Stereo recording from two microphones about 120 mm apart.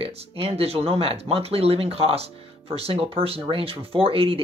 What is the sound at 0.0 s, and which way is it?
Speech, 55° right (ahead or behind).